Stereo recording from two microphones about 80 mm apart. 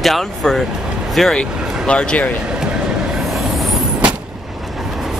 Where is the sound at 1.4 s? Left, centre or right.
Centre.